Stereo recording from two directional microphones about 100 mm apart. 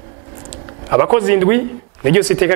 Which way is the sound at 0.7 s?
20° right (ahead or behind).